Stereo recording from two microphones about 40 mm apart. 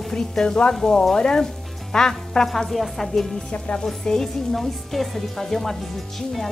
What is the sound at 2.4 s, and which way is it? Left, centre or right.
A woman's voice, centre.